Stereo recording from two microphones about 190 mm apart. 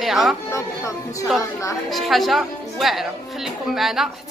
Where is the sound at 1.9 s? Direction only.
Centre (ahead or behind).